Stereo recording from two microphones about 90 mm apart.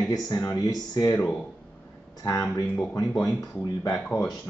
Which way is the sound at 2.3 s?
40° left (ahead or behind).